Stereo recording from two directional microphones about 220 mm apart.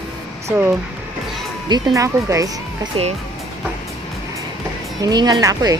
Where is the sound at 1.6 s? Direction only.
15° right (ahead or behind).